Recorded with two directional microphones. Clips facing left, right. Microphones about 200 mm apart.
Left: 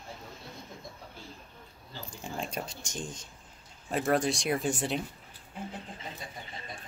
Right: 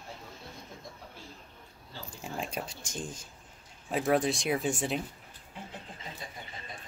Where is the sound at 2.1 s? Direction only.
5° right (ahead or behind).